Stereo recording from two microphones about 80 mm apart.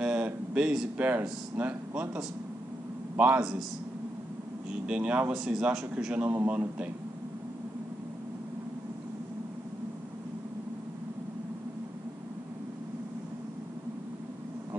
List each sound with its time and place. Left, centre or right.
0.0 s speech: centre
3.2 s a man's voice: centre
4.8 s a man's voice: centre